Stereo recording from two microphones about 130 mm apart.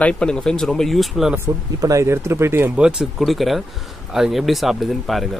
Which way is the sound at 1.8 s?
25° right (ahead or behind).